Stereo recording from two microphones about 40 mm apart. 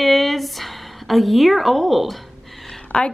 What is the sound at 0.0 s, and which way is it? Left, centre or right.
A woman's voice, centre.